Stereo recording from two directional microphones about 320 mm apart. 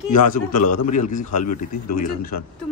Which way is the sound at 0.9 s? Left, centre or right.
Left.